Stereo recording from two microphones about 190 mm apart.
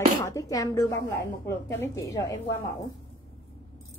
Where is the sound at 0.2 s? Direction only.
15° left (ahead or behind).